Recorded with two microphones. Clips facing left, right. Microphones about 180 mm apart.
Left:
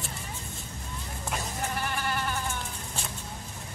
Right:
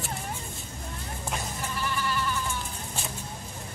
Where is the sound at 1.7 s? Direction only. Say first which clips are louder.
Right 3 dB; 55° left (ahead or behind).